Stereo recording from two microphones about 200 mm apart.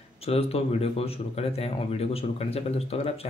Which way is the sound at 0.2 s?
30° left (ahead or behind).